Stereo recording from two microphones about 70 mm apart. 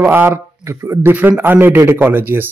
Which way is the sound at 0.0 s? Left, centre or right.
Right.